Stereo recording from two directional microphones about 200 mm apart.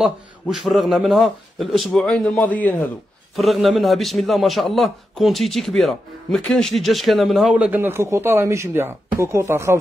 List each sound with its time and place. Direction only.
0.0 s a man's voice: centre (ahead or behind)